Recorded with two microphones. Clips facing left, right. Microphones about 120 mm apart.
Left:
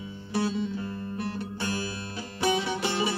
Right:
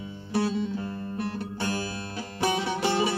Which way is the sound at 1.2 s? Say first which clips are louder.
Right 2 dB; 55° right (ahead or behind).